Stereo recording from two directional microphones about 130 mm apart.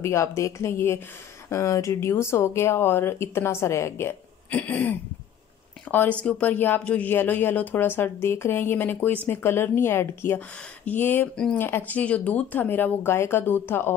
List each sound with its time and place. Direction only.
0.0 s speech: 20° left (ahead or behind)